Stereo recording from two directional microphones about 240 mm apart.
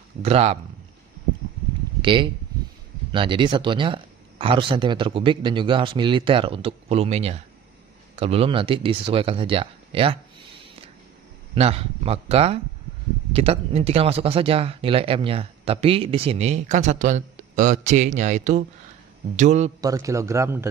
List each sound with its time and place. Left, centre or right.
0.2 s speech: right
2.0 s a sound: right
3.1 s speech: right
11.5 s speech: right
19.8 s speech: centre